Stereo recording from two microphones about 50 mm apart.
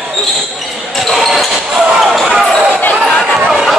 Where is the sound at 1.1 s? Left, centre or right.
Centre.